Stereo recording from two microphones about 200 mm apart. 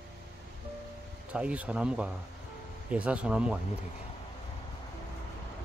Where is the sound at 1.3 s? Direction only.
5° right (ahead or behind).